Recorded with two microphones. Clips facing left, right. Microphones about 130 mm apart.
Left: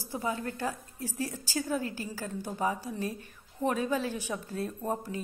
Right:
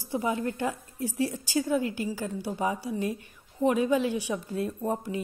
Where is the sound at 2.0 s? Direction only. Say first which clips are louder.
Right 5 dB; 15° right (ahead or behind).